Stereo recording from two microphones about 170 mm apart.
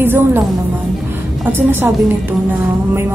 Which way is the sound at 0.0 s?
15° right (ahead or behind).